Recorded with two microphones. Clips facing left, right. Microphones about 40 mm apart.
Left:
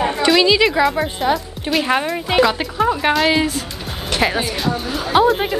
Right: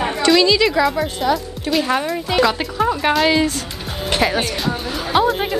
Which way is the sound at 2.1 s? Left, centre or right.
Centre.